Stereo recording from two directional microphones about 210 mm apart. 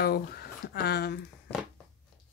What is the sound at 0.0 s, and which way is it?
Speech, 45° left (ahead or behind).